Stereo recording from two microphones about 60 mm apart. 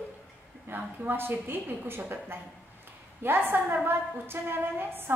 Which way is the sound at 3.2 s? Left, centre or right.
Right.